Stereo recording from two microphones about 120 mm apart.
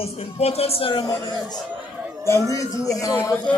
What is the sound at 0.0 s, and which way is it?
Speech, 60° left (ahead or behind).